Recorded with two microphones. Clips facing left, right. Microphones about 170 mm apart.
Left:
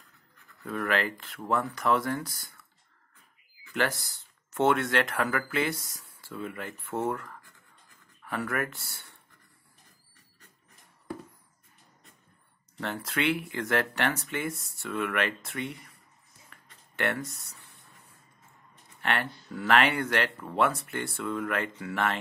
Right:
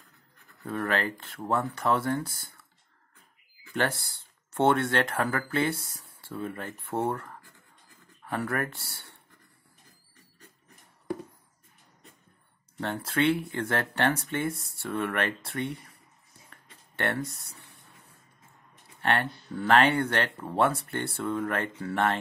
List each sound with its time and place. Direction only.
0.7 s speech: 30° right (ahead or behind)
3.8 s speech: 30° right (ahead or behind)
12.8 s speech: 30° right (ahead or behind)
17.2 s speech: 65° right (ahead or behind)
18.9 s speech: 30° right (ahead or behind)